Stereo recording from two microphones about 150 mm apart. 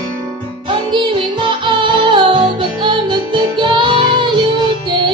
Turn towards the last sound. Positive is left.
turn(degrees=-30)  # may be behind; listen again after turning